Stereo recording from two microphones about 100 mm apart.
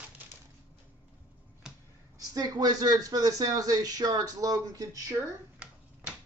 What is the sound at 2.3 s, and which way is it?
Speech, 40° right (ahead or behind).